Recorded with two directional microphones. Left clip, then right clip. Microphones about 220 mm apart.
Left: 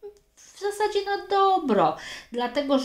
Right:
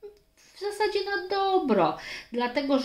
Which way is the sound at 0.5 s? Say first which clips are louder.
Left 2 dB; 30° left (ahead or behind).